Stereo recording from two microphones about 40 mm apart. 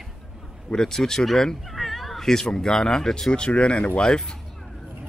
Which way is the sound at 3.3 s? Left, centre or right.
Left.